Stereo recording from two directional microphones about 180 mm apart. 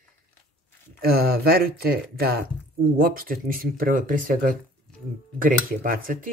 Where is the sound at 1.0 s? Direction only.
60° right (ahead or behind).